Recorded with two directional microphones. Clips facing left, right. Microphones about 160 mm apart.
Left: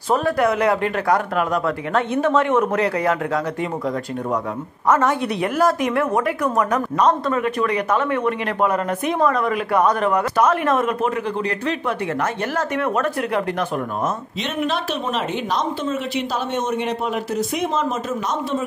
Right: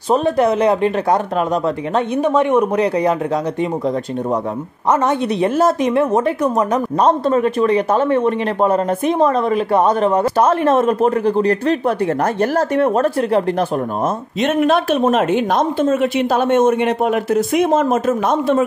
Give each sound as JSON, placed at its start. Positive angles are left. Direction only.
{"t": 0.1, "sound": "speech", "side_deg": -20}
{"t": 4.8, "sound": "speech", "side_deg": -20}
{"t": 14.4, "sound": "a woman's voice", "side_deg": -50}